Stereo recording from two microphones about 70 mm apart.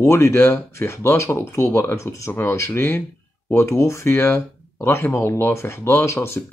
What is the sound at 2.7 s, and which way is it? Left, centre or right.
Speech, left.